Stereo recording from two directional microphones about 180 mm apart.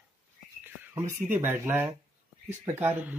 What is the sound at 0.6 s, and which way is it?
Speech, 10° right (ahead or behind).